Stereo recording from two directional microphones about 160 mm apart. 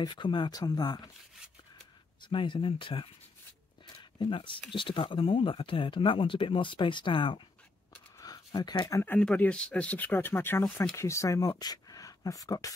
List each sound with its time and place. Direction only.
0.0 s speech: 30° left (ahead or behind)
2.2 s speech: 30° left (ahead or behind)
4.2 s speech: 30° left (ahead or behind)